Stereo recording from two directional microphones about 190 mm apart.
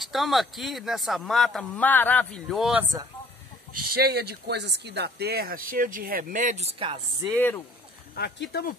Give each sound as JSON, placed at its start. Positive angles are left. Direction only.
{"t": 0.0, "sound": "speech", "side_deg": 0}
{"t": 3.9, "sound": "speech", "side_deg": -55}
{"t": 7.3, "sound": "speech", "side_deg": 10}
{"t": 8.1, "sound": "speech", "side_deg": 60}